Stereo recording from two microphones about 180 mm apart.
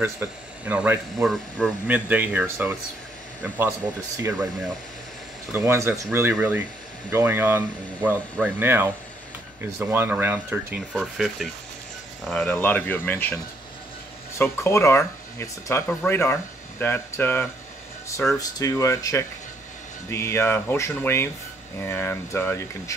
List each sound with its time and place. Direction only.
0.0 s speech: 10° right (ahead or behind)
5.5 s speech: 15° right (ahead or behind); by 13.3 s 10° left (ahead or behind)
14.4 s speech: 15° left (ahead or behind)